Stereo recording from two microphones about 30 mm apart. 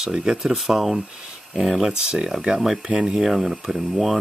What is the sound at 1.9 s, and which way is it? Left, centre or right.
Speech, right.